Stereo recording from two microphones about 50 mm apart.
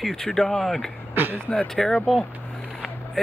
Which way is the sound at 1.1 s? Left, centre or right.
Right.